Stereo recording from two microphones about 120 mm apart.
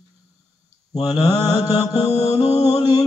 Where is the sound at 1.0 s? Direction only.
35° left (ahead or behind).